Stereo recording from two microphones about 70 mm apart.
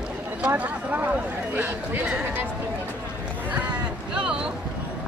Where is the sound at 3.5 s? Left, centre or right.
Centre.